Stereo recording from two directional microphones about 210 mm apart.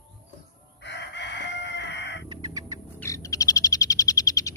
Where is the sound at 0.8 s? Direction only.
55° left (ahead or behind).